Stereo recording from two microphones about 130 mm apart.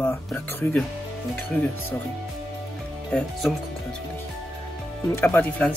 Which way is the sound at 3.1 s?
10° left (ahead or behind).